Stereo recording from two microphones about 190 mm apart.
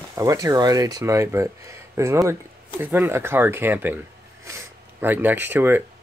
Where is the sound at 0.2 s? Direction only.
20° right (ahead or behind).